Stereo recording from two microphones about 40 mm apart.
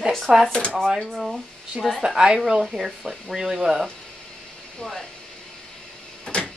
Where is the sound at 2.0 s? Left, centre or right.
Centre.